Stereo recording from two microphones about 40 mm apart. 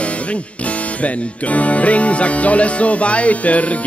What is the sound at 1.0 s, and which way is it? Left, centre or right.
Speech, left.